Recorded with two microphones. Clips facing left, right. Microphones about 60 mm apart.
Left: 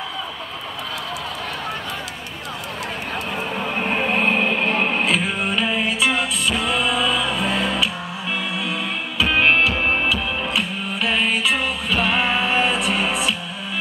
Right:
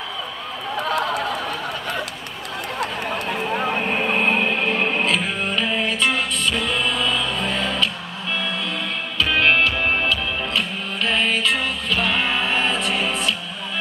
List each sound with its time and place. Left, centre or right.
0.8 s run: right
3.8 s music: centre
9.2 s music: centre